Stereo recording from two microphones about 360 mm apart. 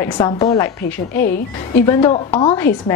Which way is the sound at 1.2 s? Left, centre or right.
Left.